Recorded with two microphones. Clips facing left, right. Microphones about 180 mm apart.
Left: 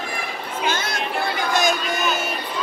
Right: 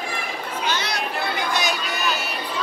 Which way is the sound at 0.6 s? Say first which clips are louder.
Left 2 dB; 50° left (ahead or behind).